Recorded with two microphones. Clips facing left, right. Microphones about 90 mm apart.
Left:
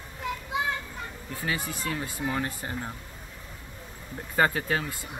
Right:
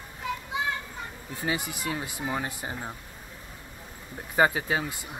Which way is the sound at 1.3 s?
20° right (ahead or behind).